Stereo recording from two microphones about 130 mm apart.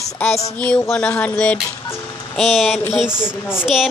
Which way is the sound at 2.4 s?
Centre (ahead or behind).